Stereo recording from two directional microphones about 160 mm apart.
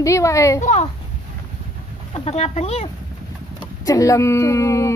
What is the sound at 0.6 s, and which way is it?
Speech, 45° left (ahead or behind).